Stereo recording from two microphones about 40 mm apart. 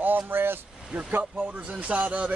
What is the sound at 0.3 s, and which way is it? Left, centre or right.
Speech, right.